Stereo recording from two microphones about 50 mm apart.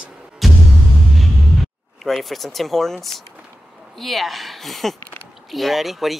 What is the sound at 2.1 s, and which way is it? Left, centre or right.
Speech, centre.